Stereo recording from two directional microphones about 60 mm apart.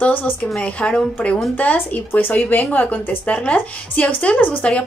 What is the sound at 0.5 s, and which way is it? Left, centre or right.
A woman's voice, centre.